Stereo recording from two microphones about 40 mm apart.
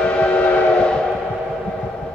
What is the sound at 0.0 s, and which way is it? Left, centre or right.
Train, left.